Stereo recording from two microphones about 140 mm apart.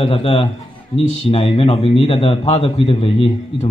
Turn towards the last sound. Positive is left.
turn(degrees=45)  # may be behind; listen again after turning